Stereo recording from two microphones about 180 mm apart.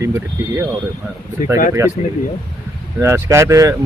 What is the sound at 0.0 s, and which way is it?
Speech, 15° right (ahead or behind).